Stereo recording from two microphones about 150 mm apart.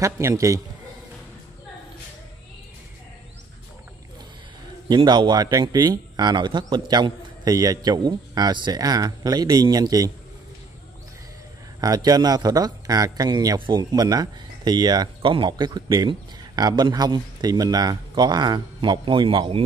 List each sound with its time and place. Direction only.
0.0 s speech: 20° right (ahead or behind)
4.8 s speech: 30° right (ahead or behind)
11.8 s speech: 25° right (ahead or behind)